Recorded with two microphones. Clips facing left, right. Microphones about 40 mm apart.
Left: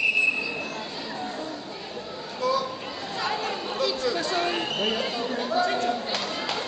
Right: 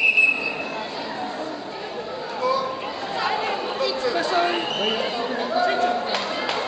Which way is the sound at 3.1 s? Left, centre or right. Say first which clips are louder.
Right 4 dB; right.